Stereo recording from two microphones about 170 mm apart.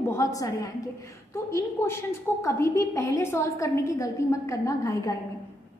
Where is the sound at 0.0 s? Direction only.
15° left (ahead or behind).